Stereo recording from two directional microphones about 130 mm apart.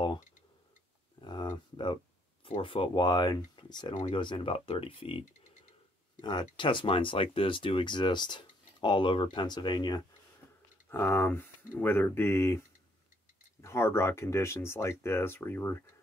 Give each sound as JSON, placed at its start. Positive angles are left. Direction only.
{"t": 1.2, "sound": "a sound", "side_deg": 35}
{"t": 2.4, "sound": "speech", "side_deg": 40}
{"t": 6.2, "sound": "speech", "side_deg": 35}
{"t": 10.9, "sound": "speech", "side_deg": 20}